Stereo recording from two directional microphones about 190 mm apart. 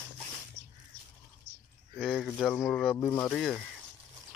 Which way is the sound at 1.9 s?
5° left (ahead or behind).